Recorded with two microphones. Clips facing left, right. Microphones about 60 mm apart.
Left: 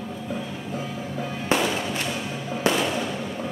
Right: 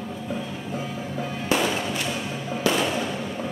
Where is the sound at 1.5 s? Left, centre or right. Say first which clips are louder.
Even; left.